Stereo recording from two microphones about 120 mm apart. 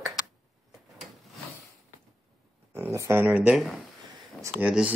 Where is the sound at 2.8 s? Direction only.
25° right (ahead or behind).